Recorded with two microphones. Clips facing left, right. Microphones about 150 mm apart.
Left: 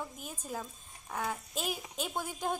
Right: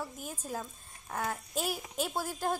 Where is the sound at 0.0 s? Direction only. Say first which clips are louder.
Right 2 dB; 10° right (ahead or behind).